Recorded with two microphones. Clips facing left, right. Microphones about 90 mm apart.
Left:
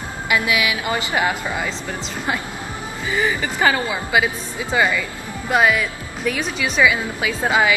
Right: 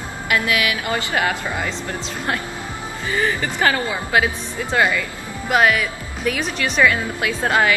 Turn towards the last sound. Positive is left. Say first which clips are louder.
# even
turn(degrees=5)  # may be behind; listen again after turning